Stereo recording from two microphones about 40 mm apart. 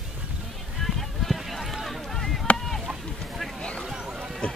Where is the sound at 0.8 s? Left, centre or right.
Centre.